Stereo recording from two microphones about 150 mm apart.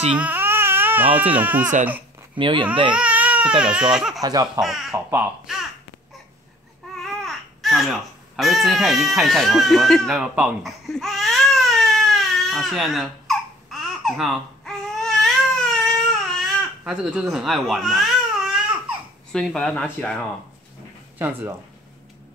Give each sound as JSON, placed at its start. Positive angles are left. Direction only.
{"t": 0.1, "sound": "baby cry", "side_deg": -10}
{"t": 1.3, "sound": "speech", "side_deg": -10}
{"t": 2.3, "sound": "speech", "side_deg": -35}
{"t": 2.9, "sound": "speech", "side_deg": -10}
{"t": 4.2, "sound": "speech", "side_deg": -25}
{"t": 4.9, "sound": "speech", "side_deg": -15}
{"t": 7.0, "sound": "babbling", "side_deg": 0}
{"t": 19.3, "sound": "speech", "side_deg": 5}
{"t": 21.2, "sound": "speech", "side_deg": -15}